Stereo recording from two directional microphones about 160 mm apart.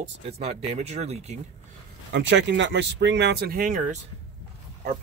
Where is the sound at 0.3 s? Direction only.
40° right (ahead or behind).